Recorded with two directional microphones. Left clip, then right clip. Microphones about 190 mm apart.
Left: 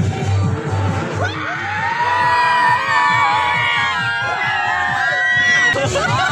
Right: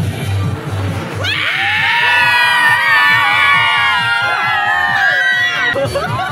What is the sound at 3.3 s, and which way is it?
Music, 35° right (ahead or behind).